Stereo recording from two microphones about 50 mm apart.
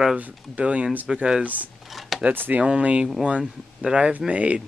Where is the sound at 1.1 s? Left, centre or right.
Centre.